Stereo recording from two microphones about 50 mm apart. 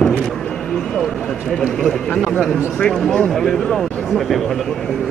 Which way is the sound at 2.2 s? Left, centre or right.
Centre.